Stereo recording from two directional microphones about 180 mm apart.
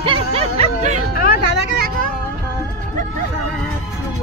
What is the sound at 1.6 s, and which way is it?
Speech, 70° right (ahead or behind).